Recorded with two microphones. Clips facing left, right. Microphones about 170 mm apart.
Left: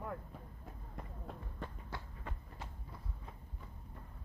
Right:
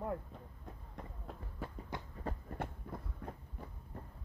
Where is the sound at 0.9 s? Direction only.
Centre (ahead or behind).